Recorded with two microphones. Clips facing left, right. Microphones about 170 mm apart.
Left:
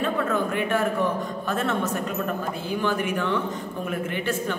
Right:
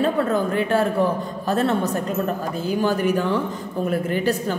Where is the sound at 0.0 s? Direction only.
35° right (ahead or behind).